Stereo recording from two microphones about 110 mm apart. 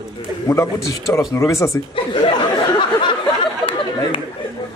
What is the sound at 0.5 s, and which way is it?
A man's voice, 30° left (ahead or behind).